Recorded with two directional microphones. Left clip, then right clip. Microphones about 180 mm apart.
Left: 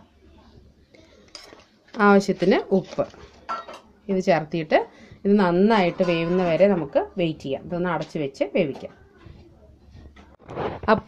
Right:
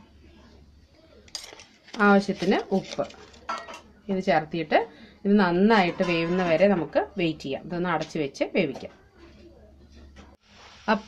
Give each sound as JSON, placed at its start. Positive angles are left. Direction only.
{"t": 2.0, "sound": "speech", "side_deg": 40}
{"t": 4.1, "sound": "a woman's voice", "side_deg": 45}